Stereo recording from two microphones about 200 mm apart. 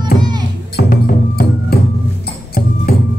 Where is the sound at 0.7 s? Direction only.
50° left (ahead or behind).